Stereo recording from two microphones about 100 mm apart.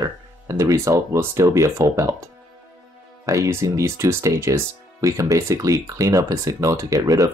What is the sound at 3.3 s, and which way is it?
Speech, 30° right (ahead or behind).